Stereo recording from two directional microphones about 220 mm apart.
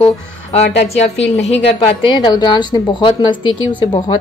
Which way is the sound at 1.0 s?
30° left (ahead or behind).